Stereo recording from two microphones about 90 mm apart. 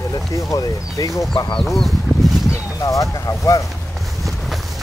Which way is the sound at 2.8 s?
40° left (ahead or behind).